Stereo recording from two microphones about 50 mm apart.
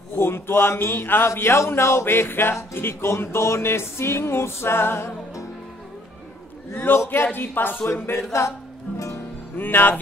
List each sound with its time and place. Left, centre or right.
0.2 s speech: left
2.7 s music: left
6.7 s a man's voice: left
7.9 s music: left
9.6 s speech: left